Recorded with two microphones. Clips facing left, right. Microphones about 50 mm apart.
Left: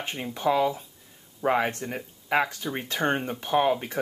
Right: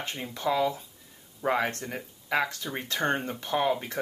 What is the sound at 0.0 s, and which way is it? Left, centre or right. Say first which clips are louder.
Speech: left 4 dB; centre.